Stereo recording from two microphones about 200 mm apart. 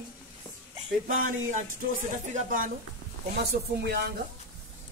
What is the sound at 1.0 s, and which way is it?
Speech, 45° right (ahead or behind).